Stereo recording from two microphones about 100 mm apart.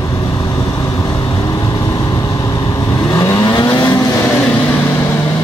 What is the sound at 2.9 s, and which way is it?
Vehicle, 35° left (ahead or behind).